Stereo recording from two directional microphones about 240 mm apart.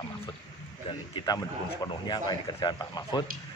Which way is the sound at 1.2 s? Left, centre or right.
Centre.